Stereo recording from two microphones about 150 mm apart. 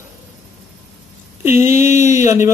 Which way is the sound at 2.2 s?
20° right (ahead or behind).